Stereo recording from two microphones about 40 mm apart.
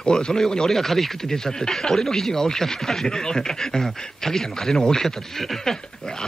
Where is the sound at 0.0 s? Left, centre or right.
Centre.